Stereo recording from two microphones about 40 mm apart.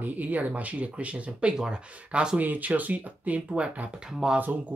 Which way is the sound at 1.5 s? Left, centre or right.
Centre.